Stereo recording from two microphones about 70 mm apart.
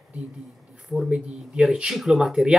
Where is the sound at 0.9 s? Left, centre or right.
Centre.